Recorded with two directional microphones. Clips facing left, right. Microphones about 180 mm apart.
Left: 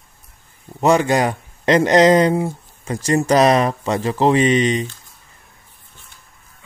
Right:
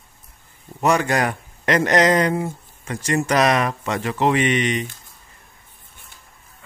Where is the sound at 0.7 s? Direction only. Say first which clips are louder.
Left 4 dB; 25° left (ahead or behind).